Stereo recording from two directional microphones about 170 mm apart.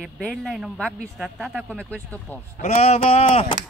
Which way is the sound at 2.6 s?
40° left (ahead or behind).